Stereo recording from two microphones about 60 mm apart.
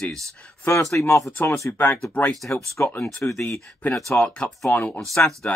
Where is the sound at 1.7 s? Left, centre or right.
Left.